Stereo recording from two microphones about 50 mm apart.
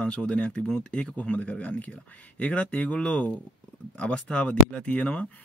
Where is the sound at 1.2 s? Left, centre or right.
Left.